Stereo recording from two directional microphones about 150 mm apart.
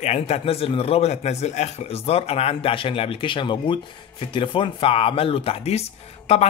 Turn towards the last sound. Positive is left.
turn(degrees=45)  # may be behind; listen again after turning